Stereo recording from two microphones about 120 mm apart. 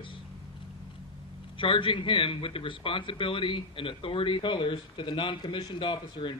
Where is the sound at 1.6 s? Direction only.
45° left (ahead or behind).